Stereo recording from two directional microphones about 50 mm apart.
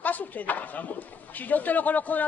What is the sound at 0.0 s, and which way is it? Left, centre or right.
Speech, left.